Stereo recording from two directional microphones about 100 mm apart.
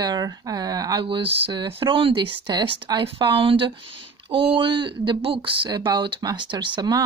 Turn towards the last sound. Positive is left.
turn(degrees=-50)  # may be behind; listen again after turning